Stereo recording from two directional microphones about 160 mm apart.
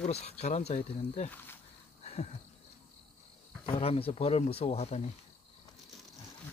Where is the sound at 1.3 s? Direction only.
10° left (ahead or behind).